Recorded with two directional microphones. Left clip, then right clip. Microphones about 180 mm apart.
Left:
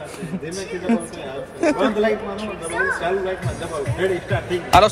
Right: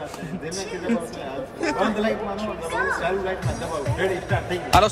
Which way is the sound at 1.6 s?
Centre (ahead or behind).